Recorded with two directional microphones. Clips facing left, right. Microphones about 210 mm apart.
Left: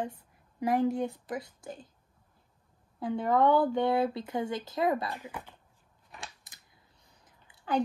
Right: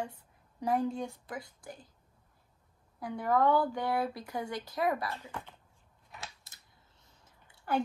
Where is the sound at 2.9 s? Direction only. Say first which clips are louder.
Left 3 dB; 25° left (ahead or behind).